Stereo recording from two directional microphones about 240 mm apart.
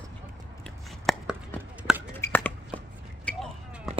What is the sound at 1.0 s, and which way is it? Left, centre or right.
Chopping, centre.